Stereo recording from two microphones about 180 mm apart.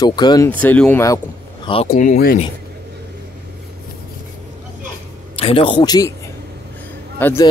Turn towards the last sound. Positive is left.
turn(degrees=10)  # may be behind; listen again after turning